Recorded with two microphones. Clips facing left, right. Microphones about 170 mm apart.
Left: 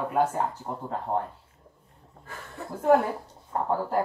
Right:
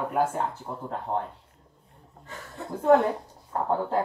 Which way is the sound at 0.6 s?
30° left (ahead or behind).